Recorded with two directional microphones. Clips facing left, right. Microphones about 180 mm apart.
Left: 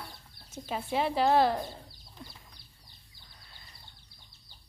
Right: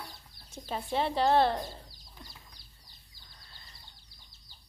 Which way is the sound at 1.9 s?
60° left (ahead or behind).